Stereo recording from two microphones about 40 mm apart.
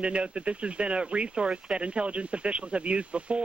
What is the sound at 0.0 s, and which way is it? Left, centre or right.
Speech, right.